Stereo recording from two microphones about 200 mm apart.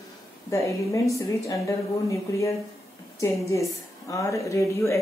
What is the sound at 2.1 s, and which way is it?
Speech, 15° left (ahead or behind).